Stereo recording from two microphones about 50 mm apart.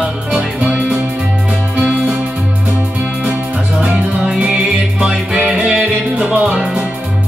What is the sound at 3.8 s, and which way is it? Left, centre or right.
Music, right.